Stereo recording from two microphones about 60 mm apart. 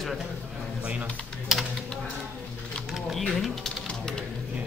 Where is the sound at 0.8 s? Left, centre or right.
Right.